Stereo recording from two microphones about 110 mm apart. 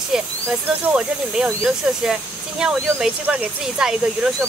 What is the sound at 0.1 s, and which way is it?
Speech, 5° right (ahead or behind).